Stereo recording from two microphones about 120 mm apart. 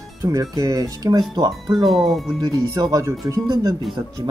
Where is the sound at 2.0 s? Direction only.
Centre (ahead or behind).